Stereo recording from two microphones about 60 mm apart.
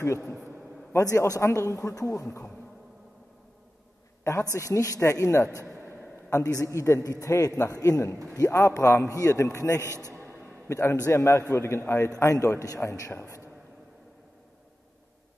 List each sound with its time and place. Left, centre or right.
1.1 s a man's voice: left
4.2 s a man's voice: left
10.1 s a sound: left
10.7 s a man's voice: left